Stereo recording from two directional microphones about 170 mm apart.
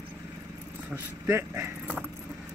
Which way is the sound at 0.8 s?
15° right (ahead or behind).